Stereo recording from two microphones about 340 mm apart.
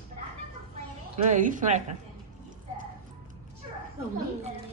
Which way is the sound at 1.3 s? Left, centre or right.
Right.